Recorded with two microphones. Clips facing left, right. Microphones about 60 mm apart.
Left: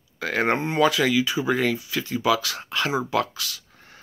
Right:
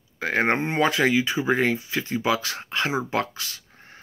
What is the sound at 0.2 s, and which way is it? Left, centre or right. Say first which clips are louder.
Speech: even; right.